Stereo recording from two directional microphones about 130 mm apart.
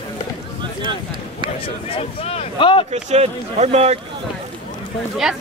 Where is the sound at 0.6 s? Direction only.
35° right (ahead or behind).